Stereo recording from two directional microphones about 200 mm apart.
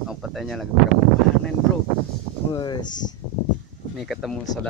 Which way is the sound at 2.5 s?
20° left (ahead or behind).